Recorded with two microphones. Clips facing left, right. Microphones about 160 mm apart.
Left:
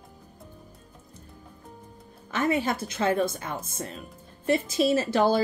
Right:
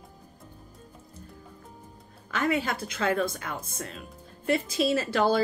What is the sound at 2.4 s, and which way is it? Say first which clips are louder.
Speech: left 2 dB; 20° left (ahead or behind).